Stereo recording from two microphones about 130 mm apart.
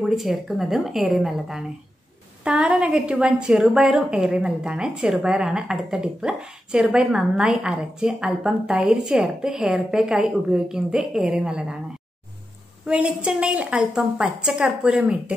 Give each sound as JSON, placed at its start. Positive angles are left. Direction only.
{"t": 0.0, "sound": "a woman's voice", "side_deg": 0}
{"t": 12.8, "sound": "a woman's voice", "side_deg": -10}